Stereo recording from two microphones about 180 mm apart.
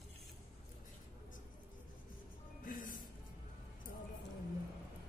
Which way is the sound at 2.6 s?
50° left (ahead or behind).